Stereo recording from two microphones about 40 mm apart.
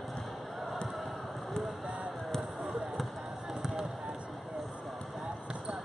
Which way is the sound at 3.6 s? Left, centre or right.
Centre.